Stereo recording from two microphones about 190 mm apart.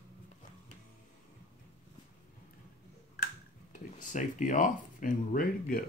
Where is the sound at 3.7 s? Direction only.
40° left (ahead or behind).